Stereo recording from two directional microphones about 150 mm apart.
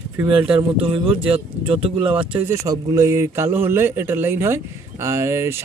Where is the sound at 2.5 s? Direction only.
25° right (ahead or behind).